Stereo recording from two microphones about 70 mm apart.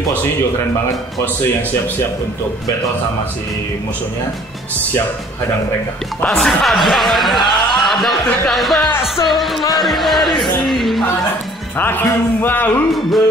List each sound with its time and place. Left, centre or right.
6.2 s speech: centre
10.7 s music: centre
11.8 s a man's voice: left